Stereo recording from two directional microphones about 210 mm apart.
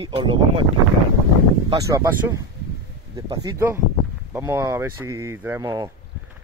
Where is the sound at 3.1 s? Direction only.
15° right (ahead or behind).